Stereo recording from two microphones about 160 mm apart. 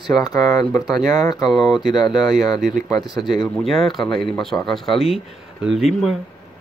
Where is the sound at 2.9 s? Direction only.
25° left (ahead or behind).